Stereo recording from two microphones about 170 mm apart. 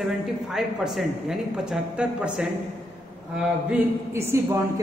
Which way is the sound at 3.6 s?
10° right (ahead or behind).